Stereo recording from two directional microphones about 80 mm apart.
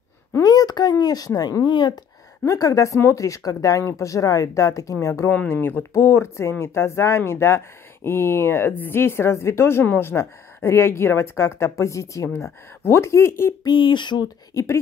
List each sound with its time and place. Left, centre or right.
0.4 s speech: left
1.6 s speech: left
2.4 s speech: left
5.3 s speech: left
5.9 s speech: left
13.7 s speech: left
14.5 s speech: left